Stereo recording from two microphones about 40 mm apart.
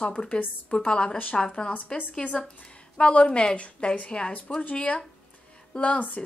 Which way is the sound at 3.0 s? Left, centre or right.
Left.